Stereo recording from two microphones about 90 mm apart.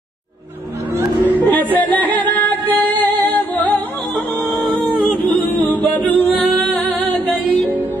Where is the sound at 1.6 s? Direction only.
20° left (ahead or behind).